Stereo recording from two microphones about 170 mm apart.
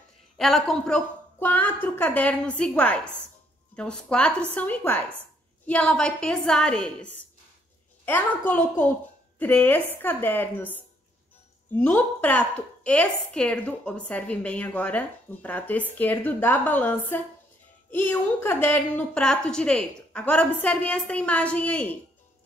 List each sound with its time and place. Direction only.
0.4 s a woman's voice: centre (ahead or behind)